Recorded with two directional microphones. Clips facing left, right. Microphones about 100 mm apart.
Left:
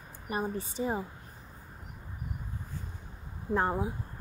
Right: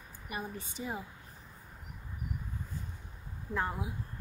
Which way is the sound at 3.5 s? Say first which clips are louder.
Left 6 dB; 35° left (ahead or behind).